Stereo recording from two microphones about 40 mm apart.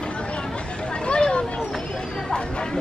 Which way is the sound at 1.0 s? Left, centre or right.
Left.